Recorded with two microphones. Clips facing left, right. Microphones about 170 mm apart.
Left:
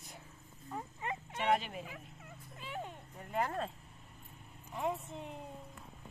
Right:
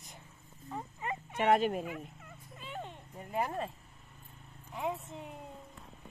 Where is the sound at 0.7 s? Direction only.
5° right (ahead or behind).